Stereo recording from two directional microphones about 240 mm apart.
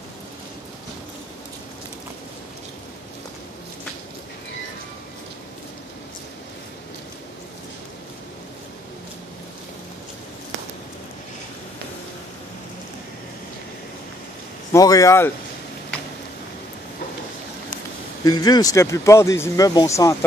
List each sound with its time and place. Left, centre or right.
14.7 s speech: centre
18.2 s speech: centre